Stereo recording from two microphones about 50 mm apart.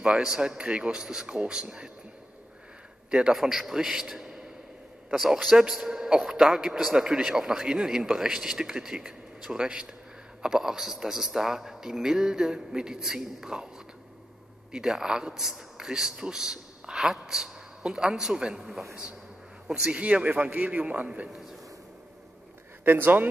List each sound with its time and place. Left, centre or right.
0.0 s a man's voice: centre
3.1 s a man's voice: centre
3.3 s a man's voice: centre
14.7 s a man's voice: centre
19.7 s a man's voice: centre; by 21.1 s right
21.3 s a man's voice: centre
22.8 s speech: right